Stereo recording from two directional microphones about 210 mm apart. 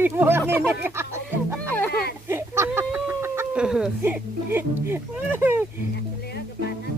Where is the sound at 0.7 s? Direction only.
10° right (ahead or behind).